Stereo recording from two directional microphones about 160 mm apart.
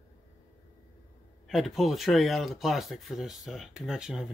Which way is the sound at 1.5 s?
Centre (ahead or behind).